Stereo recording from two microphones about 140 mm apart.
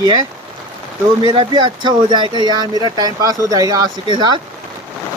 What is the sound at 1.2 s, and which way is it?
Speech, 35° right (ahead or behind).